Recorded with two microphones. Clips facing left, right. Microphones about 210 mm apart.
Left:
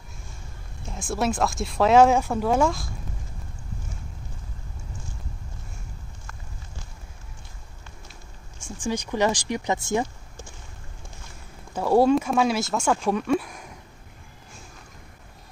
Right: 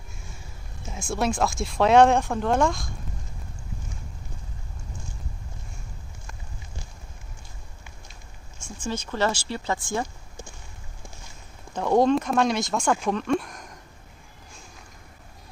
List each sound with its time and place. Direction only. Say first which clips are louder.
0.8 s speech: even; centre (ahead or behind)
8.8 s speech: left 2 dB; 15° left (ahead or behind)
11.7 s speech: left 1 dB; 5° left (ahead or behind)